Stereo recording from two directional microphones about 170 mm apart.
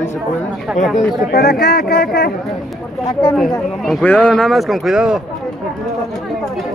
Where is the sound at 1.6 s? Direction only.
65° left (ahead or behind).